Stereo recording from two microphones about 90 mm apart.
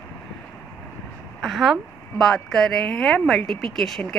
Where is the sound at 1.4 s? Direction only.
Centre (ahead or behind).